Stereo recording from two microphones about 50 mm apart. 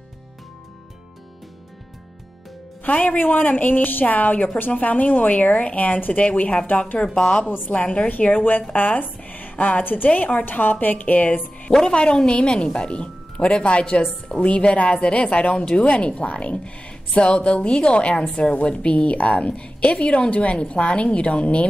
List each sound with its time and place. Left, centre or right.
2.8 s a woman's voice: left
7.4 s a woman's voice: left
7.7 s a woman's voice: left
8.1 s a woman's voice: left